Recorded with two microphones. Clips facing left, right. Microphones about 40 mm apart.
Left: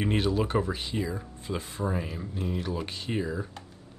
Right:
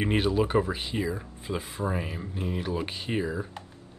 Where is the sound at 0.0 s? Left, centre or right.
Centre.